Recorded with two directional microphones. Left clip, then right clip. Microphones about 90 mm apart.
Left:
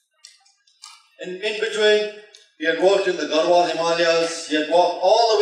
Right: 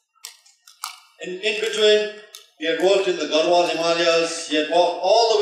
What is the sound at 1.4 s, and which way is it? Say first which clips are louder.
A man's voice: right 1 dB; 40° left (ahead or behind).